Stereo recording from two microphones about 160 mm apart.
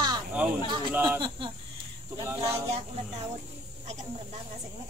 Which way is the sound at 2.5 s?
40° right (ahead or behind).